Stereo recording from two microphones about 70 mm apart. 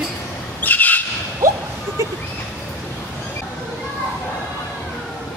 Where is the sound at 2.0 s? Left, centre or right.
Right.